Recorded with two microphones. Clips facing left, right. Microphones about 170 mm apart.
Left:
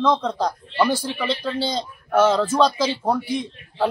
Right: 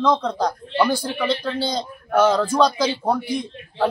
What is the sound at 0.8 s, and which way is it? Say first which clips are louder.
Speech: even; 30° left (ahead or behind).